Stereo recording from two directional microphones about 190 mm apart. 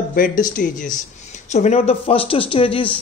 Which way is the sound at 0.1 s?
45° left (ahead or behind).